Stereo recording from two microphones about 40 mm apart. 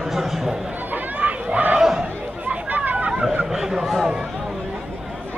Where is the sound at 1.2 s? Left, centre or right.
Right.